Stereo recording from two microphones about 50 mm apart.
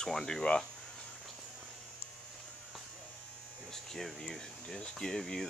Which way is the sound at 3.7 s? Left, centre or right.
Centre.